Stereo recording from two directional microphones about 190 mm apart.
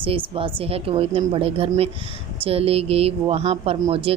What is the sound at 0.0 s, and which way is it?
A woman's voice, 30° right (ahead or behind).